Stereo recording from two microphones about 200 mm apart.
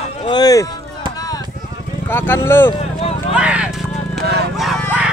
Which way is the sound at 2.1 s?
10° left (ahead or behind).